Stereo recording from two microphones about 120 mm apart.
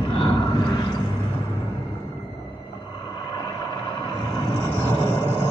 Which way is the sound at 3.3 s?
45° left (ahead or behind).